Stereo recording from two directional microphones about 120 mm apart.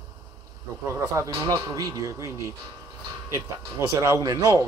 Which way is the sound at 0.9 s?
25° right (ahead or behind).